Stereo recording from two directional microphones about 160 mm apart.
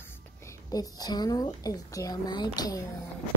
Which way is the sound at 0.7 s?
25° left (ahead or behind).